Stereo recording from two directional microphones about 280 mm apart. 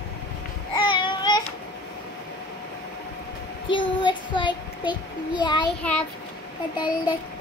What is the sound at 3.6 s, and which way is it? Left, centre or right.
A child's voice, centre.